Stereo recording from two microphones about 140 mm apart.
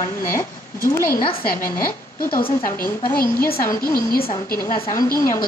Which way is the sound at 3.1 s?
90° left.